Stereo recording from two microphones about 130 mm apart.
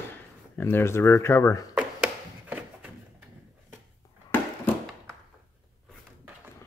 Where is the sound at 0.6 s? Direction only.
15° left (ahead or behind).